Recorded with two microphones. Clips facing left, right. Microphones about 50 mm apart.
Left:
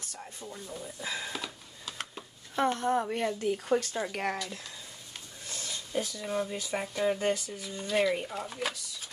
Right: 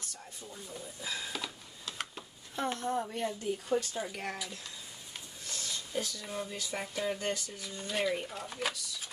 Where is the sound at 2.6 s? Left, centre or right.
Left.